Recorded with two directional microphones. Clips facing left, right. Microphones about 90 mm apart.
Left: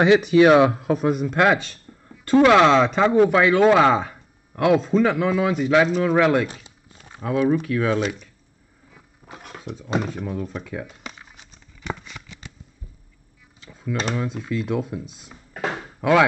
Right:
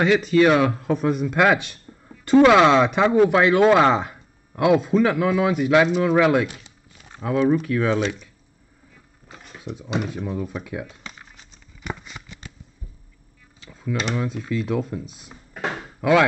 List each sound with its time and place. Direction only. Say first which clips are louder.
0.0 s speech: left 2 dB; 20° left (ahead or behind)
0.9 s speech: even; 5° left (ahead or behind)
6.4 s chopping: even; 35° left (ahead or behind)
7.6 s speech: even; centre (ahead or behind)
10.0 s speech: even; 5° right (ahead or behind)
11.8 s a sound: left 1 dB; 10° right (ahead or behind)
13.6 s tick-tock: right 1 dB; centre (ahead or behind)
14.1 s speech: right 1 dB; centre (ahead or behind)